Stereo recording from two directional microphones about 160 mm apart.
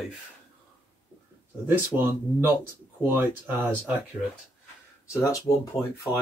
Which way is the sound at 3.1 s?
15° right (ahead or behind).